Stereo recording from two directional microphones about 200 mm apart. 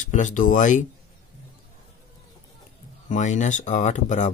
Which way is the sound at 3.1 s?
35° left (ahead or behind).